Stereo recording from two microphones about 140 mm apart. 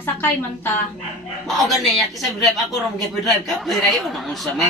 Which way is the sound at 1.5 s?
Centre (ahead or behind).